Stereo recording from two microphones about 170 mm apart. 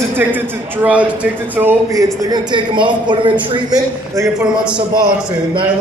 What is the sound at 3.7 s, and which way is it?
A man's voice, 15° right (ahead or behind).